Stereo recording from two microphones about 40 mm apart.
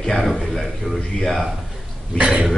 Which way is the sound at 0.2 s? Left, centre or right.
Centre.